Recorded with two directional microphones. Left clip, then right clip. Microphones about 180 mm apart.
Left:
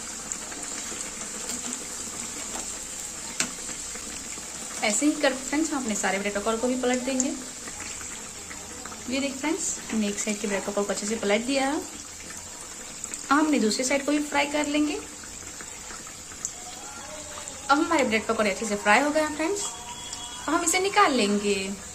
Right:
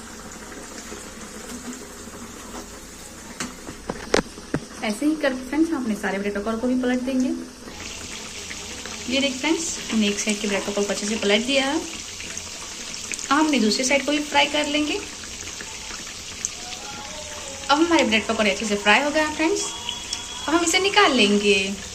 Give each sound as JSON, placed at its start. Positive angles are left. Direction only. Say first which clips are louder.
{"t": 4.8, "sound": "speech", "louder": "even", "side_deg": 20}
{"t": 9.1, "sound": "speech", "louder": "right 6 dB", "side_deg": 10}
{"t": 13.3, "sound": "speech", "louder": "right 3 dB", "side_deg": 15}
{"t": 17.6, "sound": "speech", "louder": "right 4 dB", "side_deg": 15}